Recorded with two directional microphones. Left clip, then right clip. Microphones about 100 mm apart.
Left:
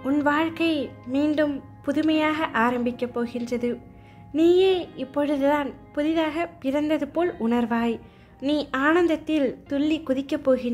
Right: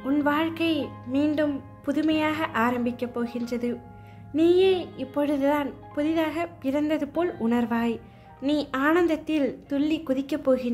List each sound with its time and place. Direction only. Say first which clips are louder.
0.0 s speech: left 2 dB; 30° left (ahead or behind)